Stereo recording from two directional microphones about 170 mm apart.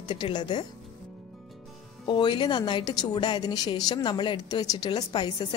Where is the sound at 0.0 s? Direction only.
25° left (ahead or behind).